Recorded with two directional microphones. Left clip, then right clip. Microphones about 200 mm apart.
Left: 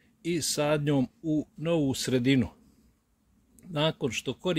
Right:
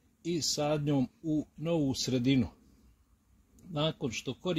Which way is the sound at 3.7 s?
5° left (ahead or behind).